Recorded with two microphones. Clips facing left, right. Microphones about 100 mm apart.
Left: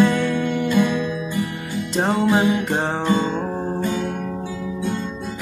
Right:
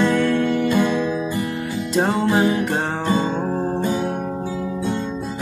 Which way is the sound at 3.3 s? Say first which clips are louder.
Right 2 dB; 5° right (ahead or behind).